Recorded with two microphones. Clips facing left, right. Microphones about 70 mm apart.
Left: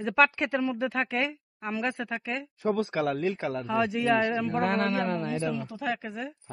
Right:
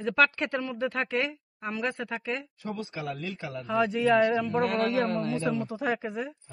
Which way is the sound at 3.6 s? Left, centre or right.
Centre.